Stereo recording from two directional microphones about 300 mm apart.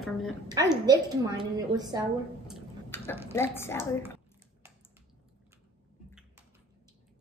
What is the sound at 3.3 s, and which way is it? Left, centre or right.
Speech, centre.